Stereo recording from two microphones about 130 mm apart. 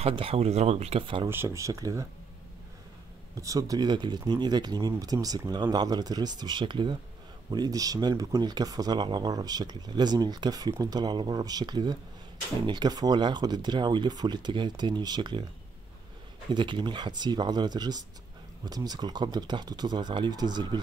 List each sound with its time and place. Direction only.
0.0 s speech: 45° right (ahead or behind)
1.3 s speech: 20° right (ahead or behind)
3.3 s speech: 25° right (ahead or behind)
16.5 s speech: 35° right (ahead or behind)